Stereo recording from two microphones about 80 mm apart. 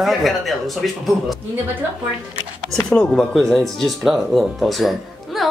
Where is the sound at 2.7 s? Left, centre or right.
Centre.